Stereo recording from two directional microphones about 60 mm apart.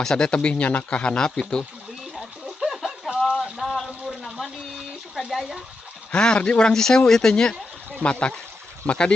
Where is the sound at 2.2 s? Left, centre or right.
Centre.